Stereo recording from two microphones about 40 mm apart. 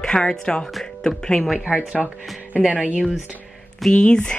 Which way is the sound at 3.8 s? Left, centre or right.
Left.